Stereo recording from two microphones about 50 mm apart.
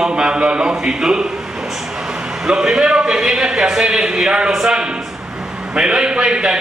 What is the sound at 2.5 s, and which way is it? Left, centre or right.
A man's voice, centre.